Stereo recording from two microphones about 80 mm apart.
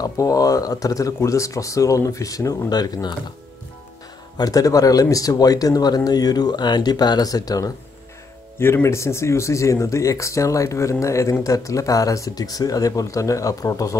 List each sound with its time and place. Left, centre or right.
0.0 s speech: left
4.4 s speech: left
8.5 s speech: left